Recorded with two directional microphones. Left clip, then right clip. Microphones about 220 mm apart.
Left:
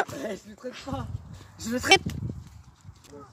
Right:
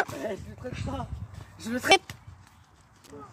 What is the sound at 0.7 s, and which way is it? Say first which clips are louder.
Speech: left 1 dB; 15° left (ahead or behind).